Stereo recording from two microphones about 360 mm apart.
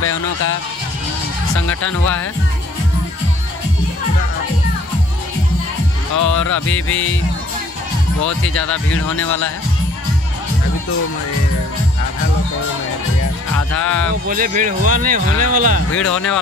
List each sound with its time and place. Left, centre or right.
0.0 s music: left
1.9 s speech: centre
6.1 s speech: left
6.4 s music: left
13.7 s speech: centre
14.2 s speech: right
16.1 s speech: centre